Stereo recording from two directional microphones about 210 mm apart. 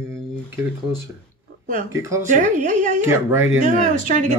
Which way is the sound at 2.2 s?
40° right (ahead or behind).